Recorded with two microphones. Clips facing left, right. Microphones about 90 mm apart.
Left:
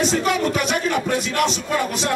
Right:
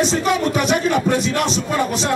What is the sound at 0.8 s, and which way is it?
Speech, 25° right (ahead or behind).